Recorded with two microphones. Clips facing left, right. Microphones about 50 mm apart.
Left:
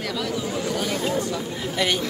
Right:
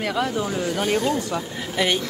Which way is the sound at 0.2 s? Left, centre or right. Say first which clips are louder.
Right 2 dB; right.